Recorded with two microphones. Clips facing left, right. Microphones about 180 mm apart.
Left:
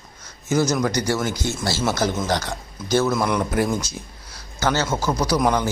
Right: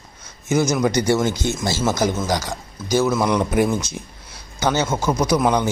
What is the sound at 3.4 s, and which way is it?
Speech, 20° right (ahead or behind).